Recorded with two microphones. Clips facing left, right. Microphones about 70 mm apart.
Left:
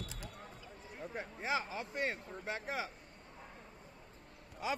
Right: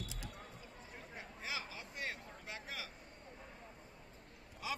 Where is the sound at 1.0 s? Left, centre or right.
Left.